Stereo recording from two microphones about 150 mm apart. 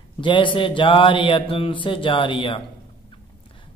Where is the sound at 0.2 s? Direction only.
35° left (ahead or behind).